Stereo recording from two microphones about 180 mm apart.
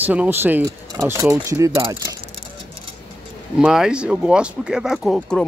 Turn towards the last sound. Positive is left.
turn(degrees=0)  # may be behind; listen again after turning